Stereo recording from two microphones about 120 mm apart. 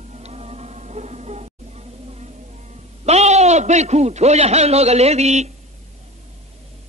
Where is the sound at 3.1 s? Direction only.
65° right (ahead or behind).